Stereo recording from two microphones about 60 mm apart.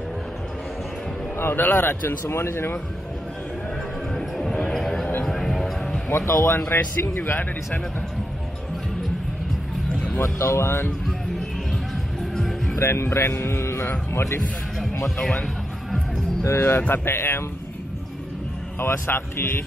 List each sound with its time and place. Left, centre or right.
1.4 s a man's voice: left
4.1 s music: centre
4.6 s a sound: centre
5.2 s music: centre
6.1 s speech: left
6.7 s speech: left
10.4 s speech: left
12.2 s music: centre
12.7 s speech: left
15.0 s speech: centre
16.4 s speech: left
18.8 s speech: left